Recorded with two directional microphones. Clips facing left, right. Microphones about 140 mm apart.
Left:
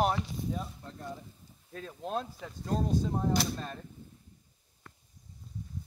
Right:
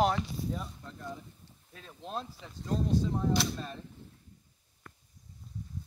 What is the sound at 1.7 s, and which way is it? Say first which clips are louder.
Speech: left 4 dB; 50° left (ahead or behind).